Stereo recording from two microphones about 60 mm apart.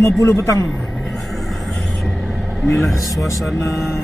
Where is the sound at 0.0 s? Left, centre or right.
Left.